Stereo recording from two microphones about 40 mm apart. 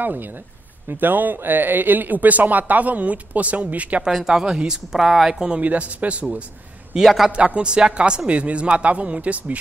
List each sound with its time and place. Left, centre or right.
0.0 s speech: right
4.3 s a woman's voice: right
4.9 s speech: centre
5.6 s speech: right
6.9 s a woman's voice: centre; by 9.6 s right